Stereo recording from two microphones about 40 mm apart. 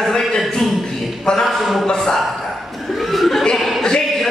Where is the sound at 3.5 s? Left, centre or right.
Centre.